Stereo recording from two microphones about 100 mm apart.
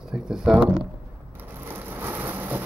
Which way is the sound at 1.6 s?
20° right (ahead or behind).